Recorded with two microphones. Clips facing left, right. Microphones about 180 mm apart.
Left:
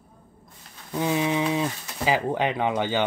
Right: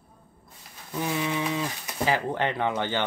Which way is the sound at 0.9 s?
20° left (ahead or behind).